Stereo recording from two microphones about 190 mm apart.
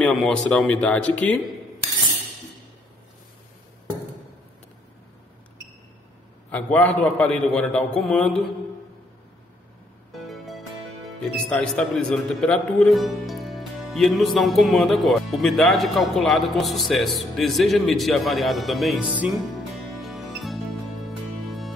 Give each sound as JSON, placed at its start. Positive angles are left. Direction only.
{"t": 0.0, "sound": "a man's voice", "side_deg": 5}
{"t": 6.5, "sound": "a man's voice", "side_deg": 10}
{"t": 10.1, "sound": "music", "side_deg": 0}
{"t": 11.5, "sound": "speech", "side_deg": 5}
{"t": 20.0, "sound": "music", "side_deg": 0}